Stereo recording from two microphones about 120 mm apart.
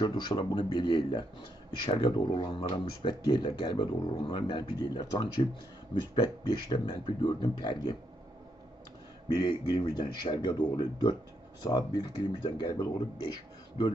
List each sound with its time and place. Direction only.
0.0 s speech: 35° left (ahead or behind)
9.4 s speech: 40° left (ahead or behind)